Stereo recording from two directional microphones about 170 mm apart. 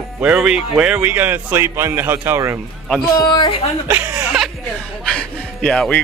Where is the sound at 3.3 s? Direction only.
30° left (ahead or behind).